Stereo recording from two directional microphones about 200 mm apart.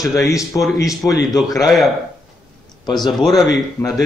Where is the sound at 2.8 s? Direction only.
20° left (ahead or behind).